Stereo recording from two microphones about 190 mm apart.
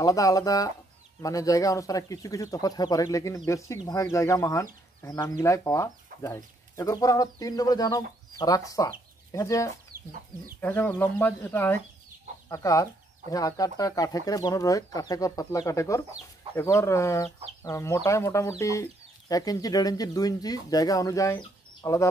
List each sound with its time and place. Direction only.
0.0 s speech: 20° left (ahead or behind)
9.9 s chicken: 50° right (ahead or behind)
10.6 s speech: 10° left (ahead or behind)